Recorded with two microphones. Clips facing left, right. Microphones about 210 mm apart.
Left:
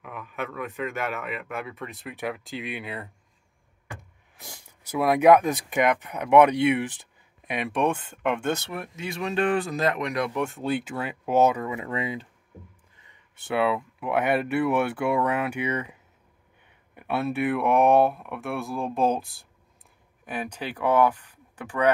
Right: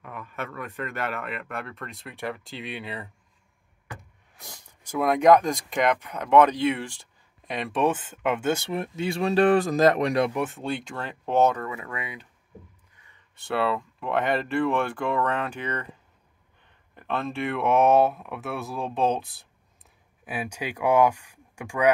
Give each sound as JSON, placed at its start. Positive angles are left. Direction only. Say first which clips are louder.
{"t": 0.0, "sound": "speech", "louder": "left 2 dB", "side_deg": 5}
{"t": 4.9, "sound": "speech", "louder": "left 1 dB", "side_deg": 5}
{"t": 7.7, "sound": "speech", "louder": "right 2 dB", "side_deg": -5}
{"t": 8.7, "sound": "speech", "louder": "right 5 dB", "side_deg": -30}
{"t": 10.3, "sound": "speech", "louder": "left 2 dB", "side_deg": 0}
{"t": 13.5, "sound": "speech", "louder": "left 1 dB", "side_deg": 5}
{"t": 20.2, "sound": "speech", "louder": "even", "side_deg": -10}